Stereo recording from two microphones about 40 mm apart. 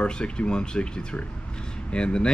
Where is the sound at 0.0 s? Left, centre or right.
Left.